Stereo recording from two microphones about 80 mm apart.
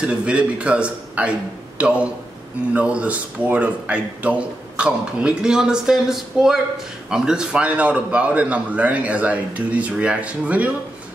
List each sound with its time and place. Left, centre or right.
0.0 s speech: centre